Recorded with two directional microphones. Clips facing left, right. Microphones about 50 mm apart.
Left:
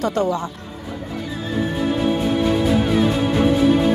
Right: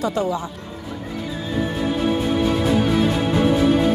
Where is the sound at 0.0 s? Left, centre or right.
Left.